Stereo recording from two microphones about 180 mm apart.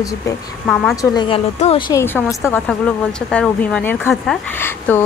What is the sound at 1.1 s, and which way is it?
Speech, 30° left (ahead or behind).